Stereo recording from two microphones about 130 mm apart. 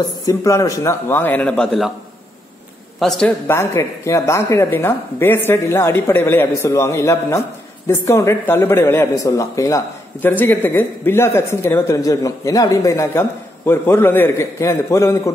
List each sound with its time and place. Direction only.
0.2 s a man's voice: 25° left (ahead or behind); by 1.9 s 5° left (ahead or behind)
3.0 s a man's voice: 5° left (ahead or behind)
3.4 s speech: 20° left (ahead or behind)
10.3 s speech: 15° left (ahead or behind)